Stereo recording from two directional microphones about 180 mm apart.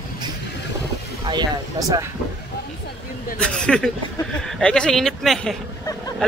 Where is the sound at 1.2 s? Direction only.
25° right (ahead or behind).